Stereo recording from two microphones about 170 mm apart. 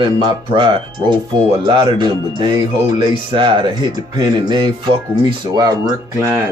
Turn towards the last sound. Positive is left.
turn(degrees=-15)  # may be behind; listen again after turning